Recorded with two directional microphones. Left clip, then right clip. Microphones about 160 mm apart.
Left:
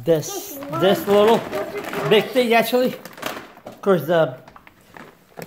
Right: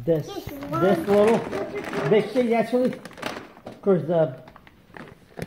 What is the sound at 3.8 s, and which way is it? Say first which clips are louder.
Speech: left 4 dB; 25° left (ahead or behind).